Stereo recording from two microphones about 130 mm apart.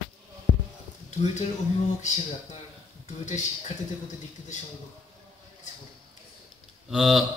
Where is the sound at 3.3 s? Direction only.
65° left (ahead or behind).